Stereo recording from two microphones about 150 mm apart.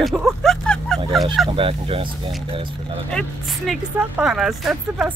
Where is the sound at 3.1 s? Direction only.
Centre (ahead or behind).